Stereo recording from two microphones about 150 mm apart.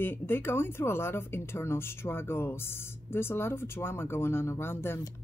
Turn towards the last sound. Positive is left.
turn(degrees=15)  # may be behind; listen again after turning